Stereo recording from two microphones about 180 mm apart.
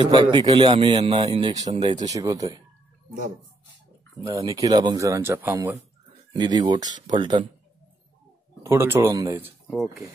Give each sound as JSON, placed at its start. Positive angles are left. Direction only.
{"t": 0.0, "sound": "a man's voice", "side_deg": -25}
{"t": 2.0, "sound": "a man's voice", "side_deg": -20}
{"t": 4.4, "sound": "a man's voice", "side_deg": -20}
{"t": 8.6, "sound": "speech", "side_deg": -15}
{"t": 9.7, "sound": "speech", "side_deg": 0}